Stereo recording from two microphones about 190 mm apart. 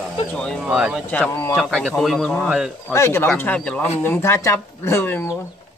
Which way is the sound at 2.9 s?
15° left (ahead or behind).